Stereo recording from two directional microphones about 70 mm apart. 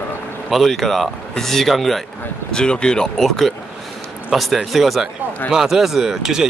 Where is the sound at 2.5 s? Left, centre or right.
Centre.